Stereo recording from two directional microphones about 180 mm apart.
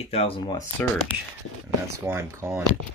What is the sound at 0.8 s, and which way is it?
Speech, 10° left (ahead or behind).